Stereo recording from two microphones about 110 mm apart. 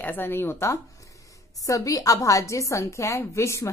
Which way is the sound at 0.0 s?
15° left (ahead or behind).